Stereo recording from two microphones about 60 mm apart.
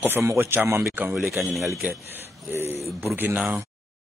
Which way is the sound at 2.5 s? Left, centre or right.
Right.